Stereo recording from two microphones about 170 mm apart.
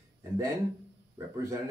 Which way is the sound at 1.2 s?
15° right (ahead or behind).